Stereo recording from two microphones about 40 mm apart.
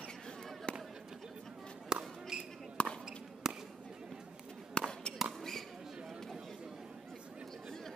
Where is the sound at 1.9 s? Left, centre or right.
Centre.